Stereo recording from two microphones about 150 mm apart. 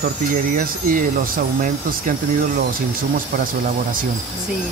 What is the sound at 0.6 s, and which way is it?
Speech, 70° right (ahead or behind).